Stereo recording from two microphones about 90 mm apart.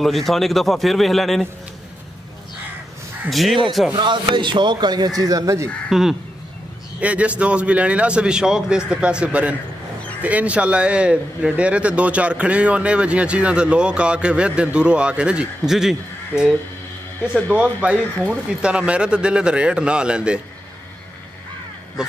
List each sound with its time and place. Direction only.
0.0 s a man's voice: centre (ahead or behind)
3.3 s a man's voice: centre (ahead or behind)
3.9 s a man's voice: 60° right (ahead or behind); by 5.7 s 35° right (ahead or behind)
5.9 s a man's voice: 5° right (ahead or behind)
7.0 s a man's voice: 15° right (ahead or behind)